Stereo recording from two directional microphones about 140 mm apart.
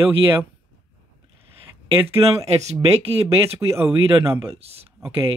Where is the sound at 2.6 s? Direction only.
50° right (ahead or behind).